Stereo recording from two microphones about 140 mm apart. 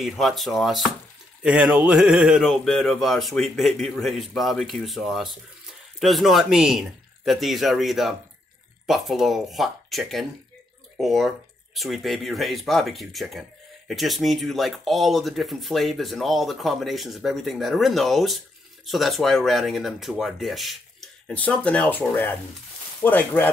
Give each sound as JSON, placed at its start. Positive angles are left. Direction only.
{"t": 0.0, "sound": "speech", "side_deg": 0}
{"t": 21.3, "sound": "speech", "side_deg": 10}